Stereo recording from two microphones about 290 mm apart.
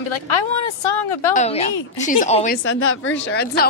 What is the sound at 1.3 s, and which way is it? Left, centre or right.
A woman's voice, left.